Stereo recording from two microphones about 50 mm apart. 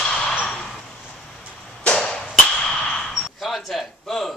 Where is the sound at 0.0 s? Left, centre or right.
Centre.